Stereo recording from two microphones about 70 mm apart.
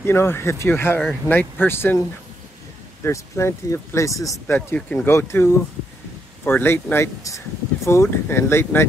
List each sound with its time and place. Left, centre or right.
0.0 s speech: left
1.3 s speech: left
1.6 s speech: left
3.0 s speech: left
4.7 s speech: left